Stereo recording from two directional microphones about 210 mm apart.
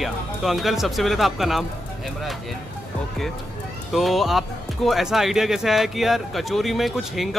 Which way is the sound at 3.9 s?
Centre (ahead or behind).